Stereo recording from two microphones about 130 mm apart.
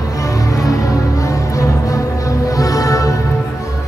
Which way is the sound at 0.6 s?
25° left (ahead or behind).